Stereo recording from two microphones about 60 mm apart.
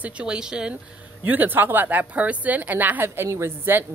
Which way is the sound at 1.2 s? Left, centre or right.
Right.